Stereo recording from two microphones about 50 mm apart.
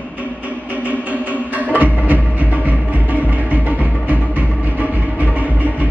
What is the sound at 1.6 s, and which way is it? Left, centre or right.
Music, right.